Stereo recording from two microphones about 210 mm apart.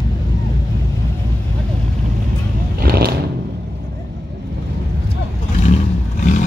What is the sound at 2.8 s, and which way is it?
Vehicle, 45° right (ahead or behind).